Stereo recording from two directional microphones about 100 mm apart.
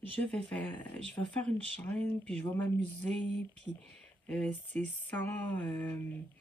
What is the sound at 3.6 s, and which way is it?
Speech, 10° left (ahead or behind).